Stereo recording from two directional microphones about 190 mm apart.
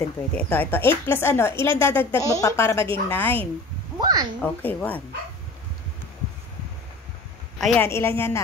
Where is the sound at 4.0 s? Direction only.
20° right (ahead or behind).